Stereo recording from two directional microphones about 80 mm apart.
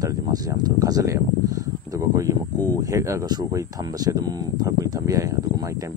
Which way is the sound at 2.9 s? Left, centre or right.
Right.